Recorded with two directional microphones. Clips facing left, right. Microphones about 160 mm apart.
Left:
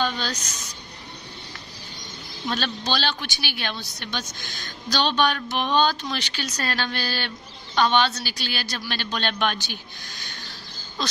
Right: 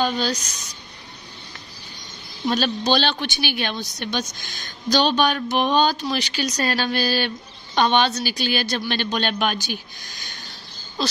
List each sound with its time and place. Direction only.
0.0 s speech: 15° right (ahead or behind)
2.4 s speech: 15° right (ahead or behind)